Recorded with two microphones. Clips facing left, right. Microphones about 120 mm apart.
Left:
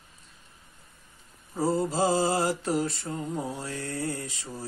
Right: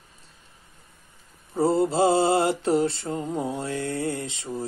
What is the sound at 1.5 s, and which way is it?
Mantra, 25° right (ahead or behind).